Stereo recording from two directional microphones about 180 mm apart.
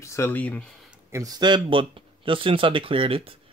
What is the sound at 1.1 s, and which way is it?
Speech, 20° right (ahead or behind).